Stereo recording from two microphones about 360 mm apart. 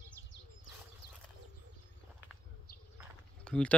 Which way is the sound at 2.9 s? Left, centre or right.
Centre.